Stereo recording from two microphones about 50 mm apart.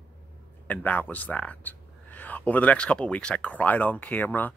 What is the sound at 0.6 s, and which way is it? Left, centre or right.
Speech, left.